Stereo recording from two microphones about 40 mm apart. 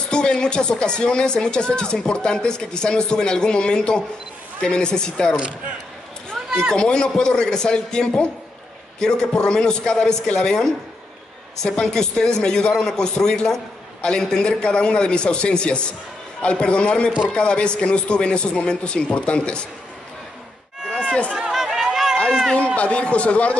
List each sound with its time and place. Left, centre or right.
0.1 s speech: left
6.7 s a man's voice: left
11.8 s a man's voice: centre
20.9 s run: left
21.4 s run: centre
22.8 s a man's voice: left